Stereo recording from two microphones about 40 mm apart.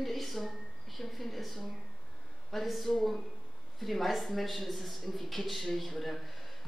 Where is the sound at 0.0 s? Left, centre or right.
Centre.